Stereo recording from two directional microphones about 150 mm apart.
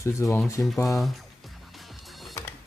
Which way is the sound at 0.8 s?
Centre (ahead or behind).